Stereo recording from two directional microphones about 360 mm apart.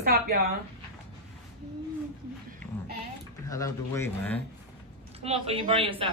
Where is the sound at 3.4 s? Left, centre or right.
Centre.